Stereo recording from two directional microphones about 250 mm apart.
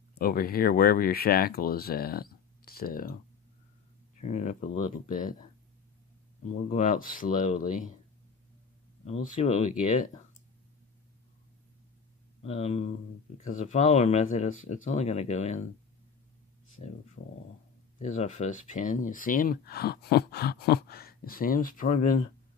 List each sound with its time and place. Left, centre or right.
0.1 s speech: left
4.2 s speech: left
6.5 s speech: left
9.0 s speech: left
12.4 s speech: left
17.2 s speech: left